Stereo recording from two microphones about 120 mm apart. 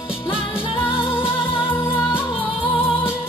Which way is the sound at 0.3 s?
50° left (ahead or behind).